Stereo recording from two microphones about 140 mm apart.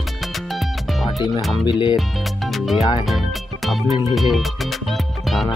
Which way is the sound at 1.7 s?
35° left (ahead or behind).